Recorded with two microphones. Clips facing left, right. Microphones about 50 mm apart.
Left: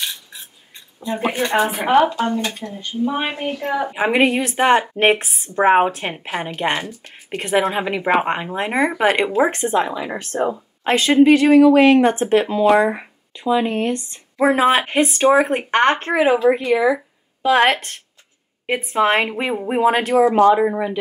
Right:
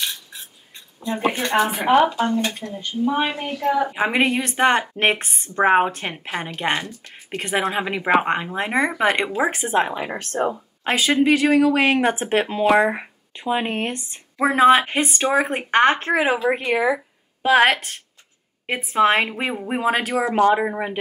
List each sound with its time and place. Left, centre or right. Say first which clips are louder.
1.1 s a woman's voice: even; centre
1.4 s speech: left 3 dB; centre
1.8 s a woman's voice: left 1 dB; centre
2.6 s a woman's voice: left 1 dB; centre
9.3 s a woman's voice: left 4 dB; centre
9.9 s speech: left 1 dB; right
10.5 s a woman's voice: left 4 dB; centre; by 14.0 s right
14.4 s a woman's voice: right 1 dB; centre
16.5 s a sound: left 3 dB; right
17.5 s a woman's voice: left 1 dB; centre